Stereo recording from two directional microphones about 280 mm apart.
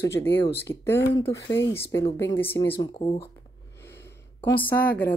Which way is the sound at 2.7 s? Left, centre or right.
Centre.